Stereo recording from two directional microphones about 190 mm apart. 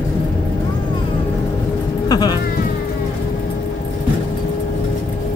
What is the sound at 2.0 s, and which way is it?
Speech, 20° left (ahead or behind).